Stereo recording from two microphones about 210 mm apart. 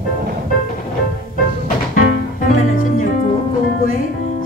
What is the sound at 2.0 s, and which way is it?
Music, 40° left (ahead or behind).